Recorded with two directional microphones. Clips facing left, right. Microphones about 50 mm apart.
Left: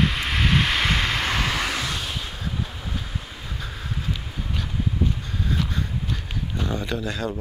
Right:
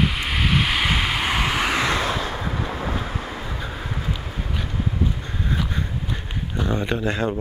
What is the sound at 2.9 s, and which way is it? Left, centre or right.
Vehicle, right.